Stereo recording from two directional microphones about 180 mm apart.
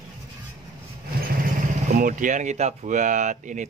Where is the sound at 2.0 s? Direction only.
50° right (ahead or behind).